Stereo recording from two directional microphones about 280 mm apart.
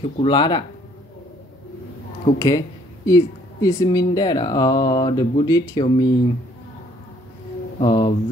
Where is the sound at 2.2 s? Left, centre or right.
Centre.